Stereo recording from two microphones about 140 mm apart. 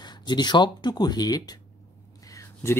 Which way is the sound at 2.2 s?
25° left (ahead or behind).